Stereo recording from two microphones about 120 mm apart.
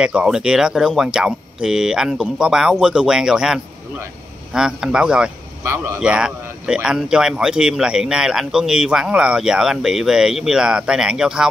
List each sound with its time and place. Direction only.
0.0 s a man's voice: 10° right (ahead or behind)
5.6 s a man's voice: 20° right (ahead or behind)
5.9 s a man's voice: 5° right (ahead or behind)